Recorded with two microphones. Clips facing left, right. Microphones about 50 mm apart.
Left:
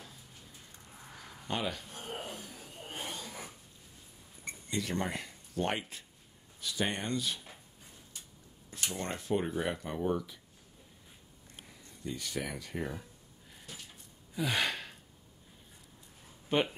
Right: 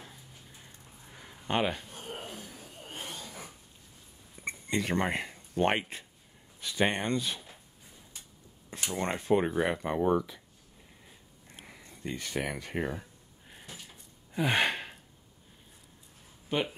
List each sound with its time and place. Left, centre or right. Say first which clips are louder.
1.5 s speech: right 6 dB; right
1.9 s a sound: even; centre
4.5 s speech: right 5 dB; right
8.9 s speech: right 6 dB; right
11.6 s speech: right 2 dB; right
14.3 s sigh: right 5 dB; right
16.4 s speech: left 1 dB; centre